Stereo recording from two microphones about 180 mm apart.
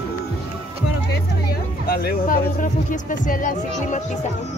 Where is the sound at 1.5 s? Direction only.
55° left (ahead or behind).